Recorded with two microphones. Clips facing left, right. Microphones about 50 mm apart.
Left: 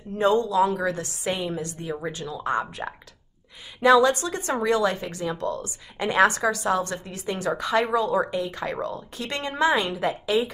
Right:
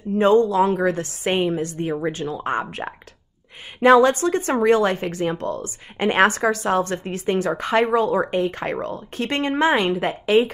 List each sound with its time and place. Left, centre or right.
0.2 s speech: right
2.8 s speech: centre
3.8 s a woman's voice: right